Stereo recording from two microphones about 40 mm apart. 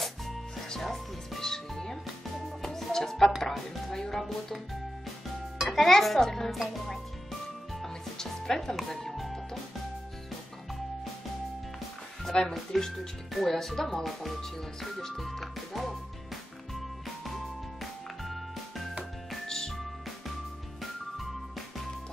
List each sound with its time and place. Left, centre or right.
0.0 s music: centre
5.7 s speech: centre
8.2 s music: centre
12.3 s speech: left
12.7 s speech: centre
14.4 s speech: centre
15.3 s music: centre
19.4 s music: centre